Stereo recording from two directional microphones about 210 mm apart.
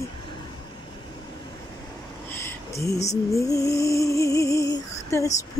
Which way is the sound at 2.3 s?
15° left (ahead or behind).